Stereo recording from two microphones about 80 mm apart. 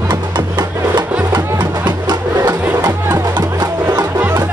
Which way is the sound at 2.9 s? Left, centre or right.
Right.